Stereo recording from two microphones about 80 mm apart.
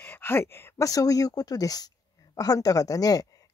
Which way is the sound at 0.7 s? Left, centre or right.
Left.